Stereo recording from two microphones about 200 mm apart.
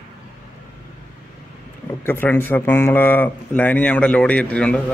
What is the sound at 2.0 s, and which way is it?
Speech, 10° left (ahead or behind).